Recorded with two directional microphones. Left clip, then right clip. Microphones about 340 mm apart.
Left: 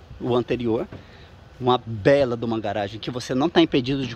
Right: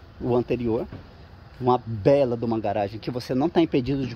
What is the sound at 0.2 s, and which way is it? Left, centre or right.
A man's voice, centre.